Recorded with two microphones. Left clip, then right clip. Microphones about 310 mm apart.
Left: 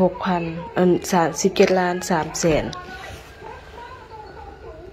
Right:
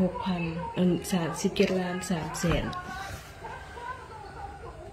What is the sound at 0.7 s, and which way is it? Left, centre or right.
Speech, centre.